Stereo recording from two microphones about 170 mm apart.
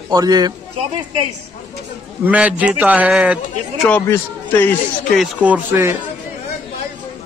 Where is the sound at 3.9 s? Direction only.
10° left (ahead or behind).